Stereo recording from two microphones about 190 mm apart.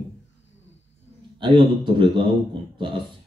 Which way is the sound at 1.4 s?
25° right (ahead or behind).